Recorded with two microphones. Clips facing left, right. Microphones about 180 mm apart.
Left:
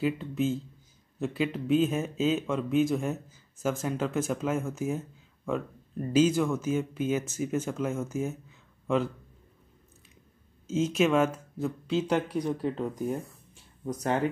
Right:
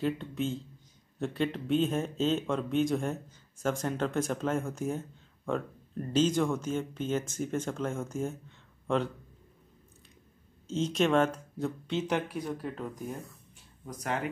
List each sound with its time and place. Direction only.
0.0 s speech: 5° left (ahead or behind)
6.1 s speech: 5° left (ahead or behind)
10.7 s speech: 5° left (ahead or behind)
12.1 s speech: 20° left (ahead or behind)